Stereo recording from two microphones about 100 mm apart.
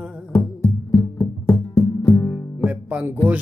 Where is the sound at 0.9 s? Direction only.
35° left (ahead or behind).